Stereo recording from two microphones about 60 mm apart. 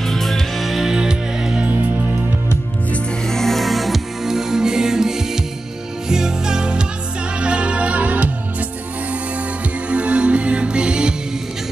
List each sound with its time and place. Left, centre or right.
0.0 s music: centre
3.3 s music: centre; by 8.6 s right
9.8 s music: centre